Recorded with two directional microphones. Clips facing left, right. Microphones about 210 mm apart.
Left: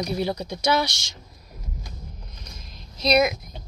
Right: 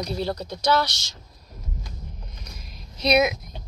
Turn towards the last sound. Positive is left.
turn(degrees=-5)  # may be behind; listen again after turning